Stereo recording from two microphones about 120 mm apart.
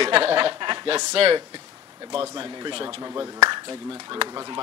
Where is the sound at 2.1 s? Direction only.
40° right (ahead or behind).